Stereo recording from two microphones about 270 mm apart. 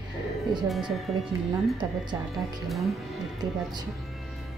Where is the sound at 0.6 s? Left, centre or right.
Centre.